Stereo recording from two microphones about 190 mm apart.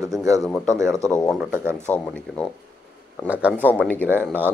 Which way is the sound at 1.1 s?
5° left (ahead or behind).